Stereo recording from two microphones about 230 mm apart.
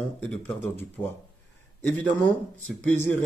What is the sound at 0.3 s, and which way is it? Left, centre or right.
Speech, centre.